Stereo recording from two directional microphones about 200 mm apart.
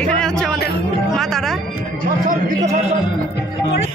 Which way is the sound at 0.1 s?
5° left (ahead or behind).